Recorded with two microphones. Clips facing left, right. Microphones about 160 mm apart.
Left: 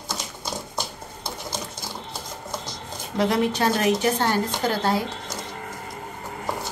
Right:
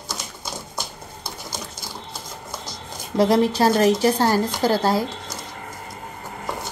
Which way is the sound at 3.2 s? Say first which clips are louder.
Right 5 dB; 35° right (ahead or behind).